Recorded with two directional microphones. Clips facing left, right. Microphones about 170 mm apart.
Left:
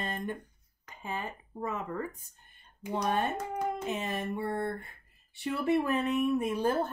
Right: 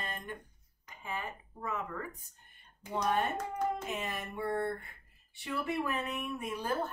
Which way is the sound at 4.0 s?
30° left (ahead or behind).